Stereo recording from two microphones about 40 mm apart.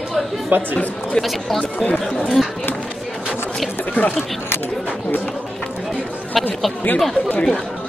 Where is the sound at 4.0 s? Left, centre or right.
Left.